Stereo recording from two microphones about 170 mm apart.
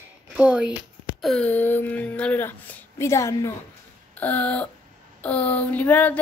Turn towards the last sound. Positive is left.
turn(degrees=10)  # may be behind; listen again after turning